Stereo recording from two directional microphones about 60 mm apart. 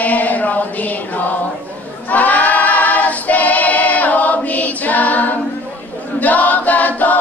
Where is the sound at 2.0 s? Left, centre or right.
Left.